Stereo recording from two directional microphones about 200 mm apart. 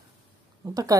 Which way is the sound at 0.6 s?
20° right (ahead or behind).